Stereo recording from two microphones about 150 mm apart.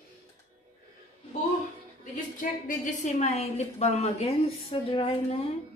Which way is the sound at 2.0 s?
60° left (ahead or behind).